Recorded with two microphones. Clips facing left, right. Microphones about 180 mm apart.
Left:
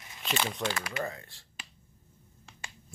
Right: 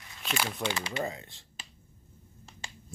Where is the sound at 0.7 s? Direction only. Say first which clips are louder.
Right 1 dB; 25° right (ahead or behind).